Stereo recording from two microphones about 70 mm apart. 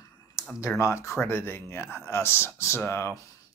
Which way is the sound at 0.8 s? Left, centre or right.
Left.